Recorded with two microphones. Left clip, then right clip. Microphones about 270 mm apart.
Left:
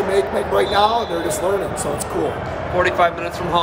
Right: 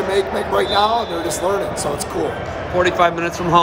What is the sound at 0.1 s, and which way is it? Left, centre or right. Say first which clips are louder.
Speech: even; centre.